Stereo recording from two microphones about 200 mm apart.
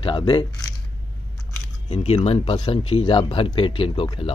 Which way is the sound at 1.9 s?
30° left (ahead or behind).